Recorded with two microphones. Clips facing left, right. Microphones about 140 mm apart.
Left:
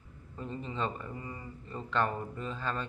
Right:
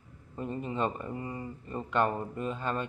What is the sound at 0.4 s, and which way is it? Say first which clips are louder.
Speech: right 4 dB; 15° right (ahead or behind).